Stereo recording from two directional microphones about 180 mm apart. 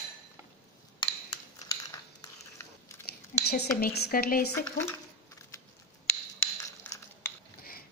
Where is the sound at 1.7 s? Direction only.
20° left (ahead or behind).